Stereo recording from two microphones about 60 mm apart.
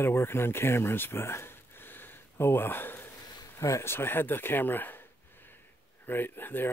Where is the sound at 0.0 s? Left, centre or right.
Left.